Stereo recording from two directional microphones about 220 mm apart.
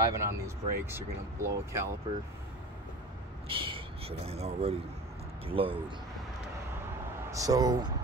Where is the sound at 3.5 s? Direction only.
25° right (ahead or behind).